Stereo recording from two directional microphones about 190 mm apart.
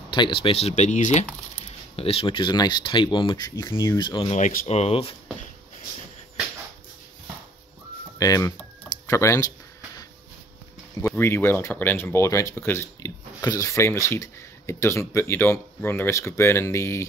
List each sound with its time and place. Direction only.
0.1 s speech: 25° left (ahead or behind)
4.3 s speech: 45° left (ahead or behind)
8.2 s typing: 15° left (ahead or behind)
11.0 s speech: 15° left (ahead or behind)